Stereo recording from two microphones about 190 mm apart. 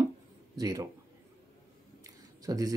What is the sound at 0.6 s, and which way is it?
Speech, 20° right (ahead or behind).